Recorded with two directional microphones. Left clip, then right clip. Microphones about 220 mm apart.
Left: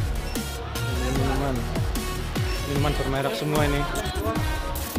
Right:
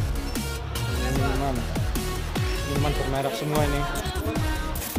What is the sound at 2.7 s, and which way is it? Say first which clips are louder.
Speech: left 1 dB; centre (ahead or behind).